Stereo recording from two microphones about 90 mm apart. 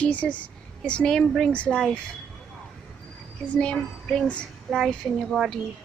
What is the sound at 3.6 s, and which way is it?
Speech, 10° left (ahead or behind).